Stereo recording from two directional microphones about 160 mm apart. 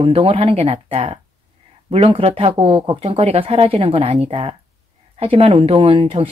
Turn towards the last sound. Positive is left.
turn(degrees=-35)  # may be behind; listen again after turning